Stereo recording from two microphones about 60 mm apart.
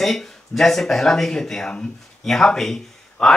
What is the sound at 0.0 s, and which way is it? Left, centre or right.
Speech, centre.